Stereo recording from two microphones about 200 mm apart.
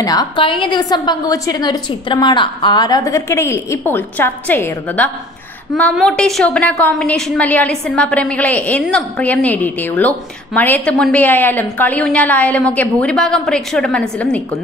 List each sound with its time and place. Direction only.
0.0 s a woman's voice: 20° left (ahead or behind); by 14.4 s 5° left (ahead or behind)